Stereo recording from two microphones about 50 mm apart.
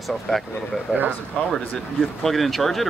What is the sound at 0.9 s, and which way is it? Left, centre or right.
Speech, right.